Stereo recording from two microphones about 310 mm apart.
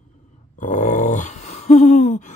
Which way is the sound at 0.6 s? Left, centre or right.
Left.